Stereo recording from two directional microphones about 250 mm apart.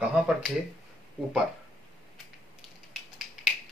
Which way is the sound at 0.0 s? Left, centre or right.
Centre.